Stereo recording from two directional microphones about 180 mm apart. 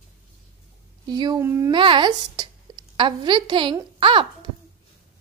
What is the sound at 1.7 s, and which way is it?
A woman's voice, 25° right (ahead or behind).